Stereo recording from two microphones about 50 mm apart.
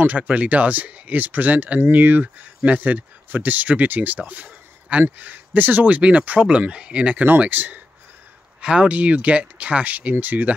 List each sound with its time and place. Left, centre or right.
0.0 s speech: right
4.3 s a sound: right
5.2 s speech: right
7.2 s speech: right
8.5 s speech: right